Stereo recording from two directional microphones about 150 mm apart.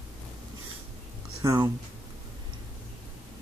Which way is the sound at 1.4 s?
20° right (ahead or behind).